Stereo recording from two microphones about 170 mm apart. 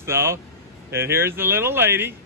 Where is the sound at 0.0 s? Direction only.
15° right (ahead or behind).